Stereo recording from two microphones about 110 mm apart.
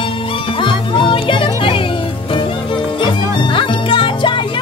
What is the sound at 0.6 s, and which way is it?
Music, 50° left (ahead or behind).